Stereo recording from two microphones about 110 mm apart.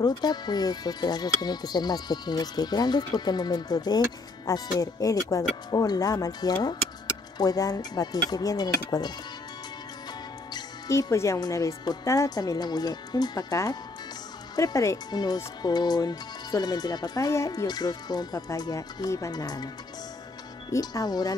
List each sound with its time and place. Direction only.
0.0 s speech: 40° left (ahead or behind)
10.5 s speech: 30° left (ahead or behind)
17.3 s speech: 25° left (ahead or behind)
20.7 s speech: 35° left (ahead or behind)